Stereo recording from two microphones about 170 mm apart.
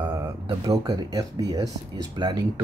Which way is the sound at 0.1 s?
20° right (ahead or behind).